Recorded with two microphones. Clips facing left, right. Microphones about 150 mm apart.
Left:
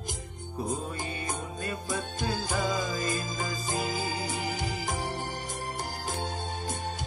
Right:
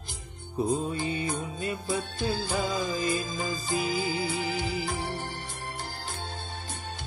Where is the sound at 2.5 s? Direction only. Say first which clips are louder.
Right 1 dB; 15° right (ahead or behind).